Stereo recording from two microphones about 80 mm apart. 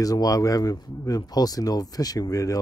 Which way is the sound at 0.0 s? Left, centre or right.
Left.